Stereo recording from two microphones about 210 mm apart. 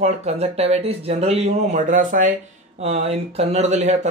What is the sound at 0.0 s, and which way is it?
Speech, 30° right (ahead or behind).